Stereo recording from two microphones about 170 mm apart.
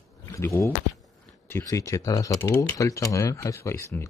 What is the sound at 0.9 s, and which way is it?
Speech, 10° left (ahead or behind).